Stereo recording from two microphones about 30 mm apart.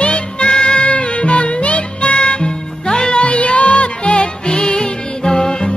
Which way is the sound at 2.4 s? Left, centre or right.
Left.